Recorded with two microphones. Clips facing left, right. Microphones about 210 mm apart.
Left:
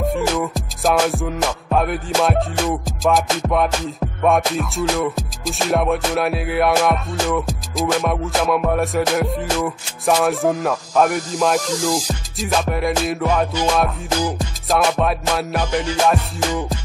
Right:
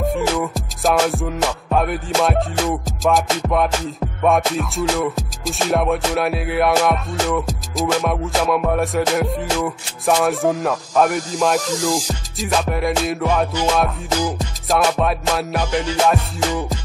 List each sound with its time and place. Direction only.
0.0 s music: centre (ahead or behind)